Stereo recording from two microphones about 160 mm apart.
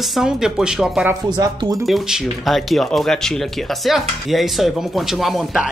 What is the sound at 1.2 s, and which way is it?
Speech, 25° right (ahead or behind).